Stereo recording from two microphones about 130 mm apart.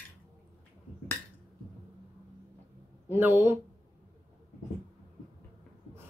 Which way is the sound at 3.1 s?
15° right (ahead or behind).